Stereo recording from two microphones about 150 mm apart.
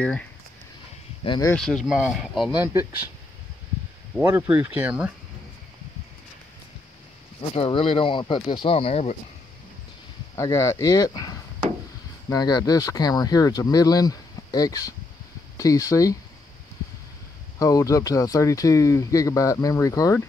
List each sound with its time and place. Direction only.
1.2 s speech: 30° left (ahead or behind)
1.5 s speech: 5° left (ahead or behind)
2.6 s speech: 15° right (ahead or behind)
4.2 s speech: 15° right (ahead or behind)
7.5 s speech: 40° left (ahead or behind)
10.3 s speech: 20° left (ahead or behind)
17.6 s speech: 25° left (ahead or behind)